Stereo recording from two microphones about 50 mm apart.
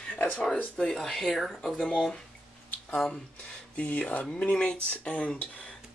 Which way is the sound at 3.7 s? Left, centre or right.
Left.